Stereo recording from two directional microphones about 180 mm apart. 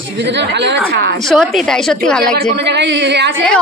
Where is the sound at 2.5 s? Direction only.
70° right (ahead or behind).